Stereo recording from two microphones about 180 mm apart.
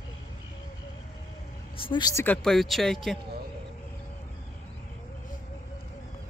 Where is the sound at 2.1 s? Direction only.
10° left (ahead or behind).